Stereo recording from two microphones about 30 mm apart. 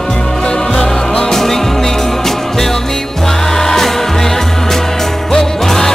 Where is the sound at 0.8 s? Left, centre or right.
Left.